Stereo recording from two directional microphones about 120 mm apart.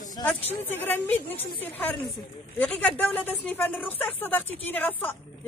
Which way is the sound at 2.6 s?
10° left (ahead or behind).